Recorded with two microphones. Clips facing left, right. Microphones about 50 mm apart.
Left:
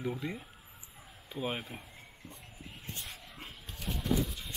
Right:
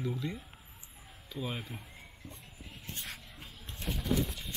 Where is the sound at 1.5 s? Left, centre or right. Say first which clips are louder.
Left 1 dB; centre.